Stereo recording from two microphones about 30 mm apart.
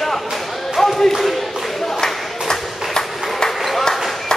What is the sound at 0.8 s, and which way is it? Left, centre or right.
Speech, centre.